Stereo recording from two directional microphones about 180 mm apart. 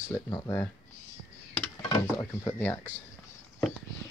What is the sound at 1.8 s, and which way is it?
Speech, 20° left (ahead or behind).